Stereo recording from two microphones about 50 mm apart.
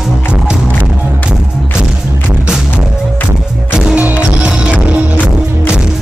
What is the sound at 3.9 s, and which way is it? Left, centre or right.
Music, right.